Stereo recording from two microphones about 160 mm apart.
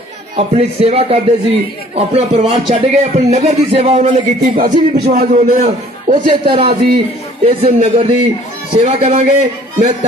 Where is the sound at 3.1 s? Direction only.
45° right (ahead or behind).